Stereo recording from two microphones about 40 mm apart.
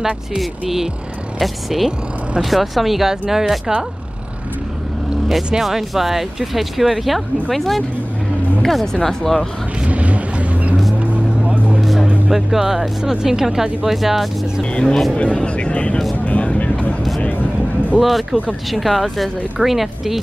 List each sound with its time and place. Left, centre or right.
0.4 s speech: centre
5.6 s speech: centre
8.9 s speech: centre
9.8 s vehicle: right
11.8 s music: centre
12.3 s speech: centre
14.6 s speech: left
16.3 s vehicle: left
18.0 s speech: centre